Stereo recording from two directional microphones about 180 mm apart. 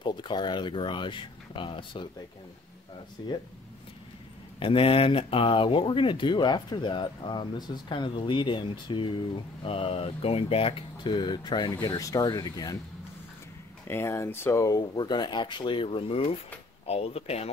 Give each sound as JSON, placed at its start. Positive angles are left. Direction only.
{"t": 0.0, "sound": "speech", "side_deg": 25}
{"t": 3.2, "sound": "speech", "side_deg": 20}
{"t": 4.6, "sound": "speech", "side_deg": 30}
{"t": 13.8, "sound": "speech", "side_deg": 15}